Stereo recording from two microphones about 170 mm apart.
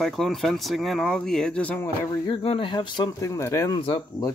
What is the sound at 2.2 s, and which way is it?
Speech, 30° left (ahead or behind).